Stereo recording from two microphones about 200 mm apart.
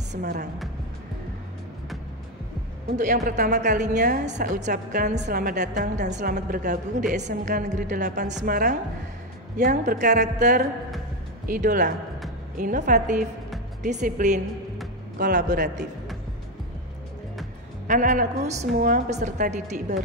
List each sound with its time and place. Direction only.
0.2 s speech: 50° right (ahead or behind)
3.3 s speech: 50° right (ahead or behind)
3.7 s a woman's voice: 35° right (ahead or behind)
6.3 s a woman's voice: 50° right (ahead or behind)
15.1 s a man's voice: 50° right (ahead or behind)
15.4 s a woman's voice: 40° right (ahead or behind)
17.8 s a woman's voice: 40° right (ahead or behind)